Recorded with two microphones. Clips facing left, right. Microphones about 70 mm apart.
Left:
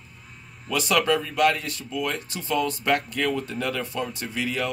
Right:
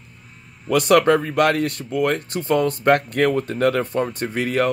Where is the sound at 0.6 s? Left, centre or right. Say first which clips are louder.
Right 7 dB; right.